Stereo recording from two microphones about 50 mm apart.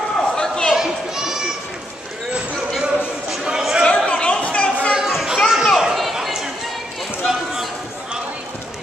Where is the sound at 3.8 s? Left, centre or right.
Left.